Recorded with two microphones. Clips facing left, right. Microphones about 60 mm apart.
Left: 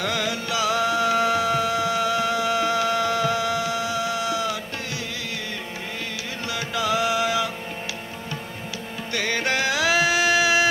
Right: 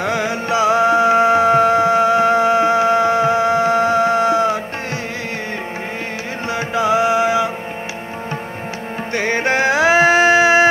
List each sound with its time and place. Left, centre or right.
0.0 s music: right
6.5 s music: right
9.1 s music: right